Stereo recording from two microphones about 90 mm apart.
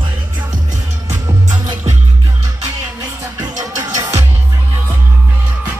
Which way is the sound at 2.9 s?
40° right (ahead or behind).